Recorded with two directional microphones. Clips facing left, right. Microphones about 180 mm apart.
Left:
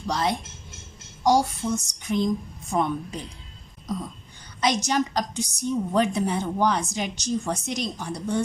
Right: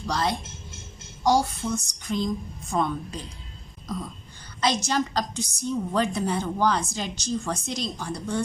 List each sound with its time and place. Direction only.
0.0 s speech: 20° left (ahead or behind)
1.2 s a sound: 20° left (ahead or behind)
2.7 s a woman's voice: 15° left (ahead or behind)
4.6 s a woman's voice: 15° left (ahead or behind)